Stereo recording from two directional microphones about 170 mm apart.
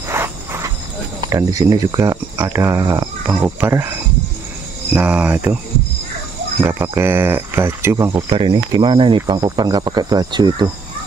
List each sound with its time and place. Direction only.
0.1 s cricket: 15° right (ahead or behind)
1.3 s speech: 20° right (ahead or behind)
4.9 s speech: 5° right (ahead or behind)
6.6 s speech: 15° right (ahead or behind)
8.1 s speech: 25° right (ahead or behind)